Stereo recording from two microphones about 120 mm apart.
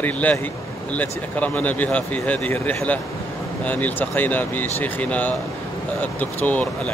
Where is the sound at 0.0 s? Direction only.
15° left (ahead or behind).